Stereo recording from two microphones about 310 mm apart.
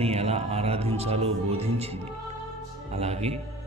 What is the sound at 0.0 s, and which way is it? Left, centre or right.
A man's voice, centre.